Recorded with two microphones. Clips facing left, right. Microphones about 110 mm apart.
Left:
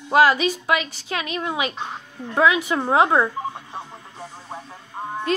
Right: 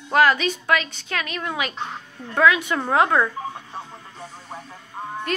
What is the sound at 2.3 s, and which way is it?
Speech, 20° left (ahead or behind).